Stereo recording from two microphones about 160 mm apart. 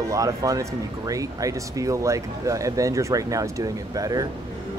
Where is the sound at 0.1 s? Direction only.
20° right (ahead or behind).